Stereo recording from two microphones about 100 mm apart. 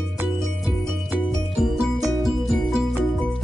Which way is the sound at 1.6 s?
Centre (ahead or behind).